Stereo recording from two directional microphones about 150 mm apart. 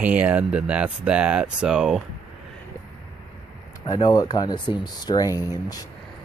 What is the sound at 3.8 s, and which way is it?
Speech, 25° left (ahead or behind).